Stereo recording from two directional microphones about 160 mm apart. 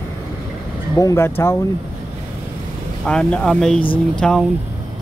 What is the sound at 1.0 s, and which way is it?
Speech, 20° left (ahead or behind).